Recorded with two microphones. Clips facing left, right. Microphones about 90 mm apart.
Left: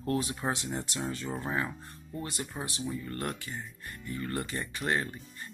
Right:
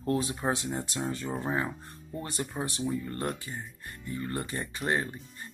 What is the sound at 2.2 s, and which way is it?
Speech, 35° right (ahead or behind).